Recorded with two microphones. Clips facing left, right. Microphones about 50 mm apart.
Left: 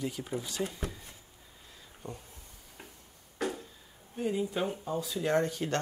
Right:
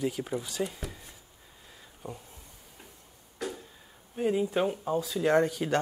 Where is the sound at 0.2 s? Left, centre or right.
Centre.